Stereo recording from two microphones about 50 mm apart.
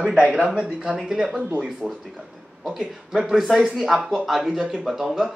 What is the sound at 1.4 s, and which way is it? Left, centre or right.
Speech, right.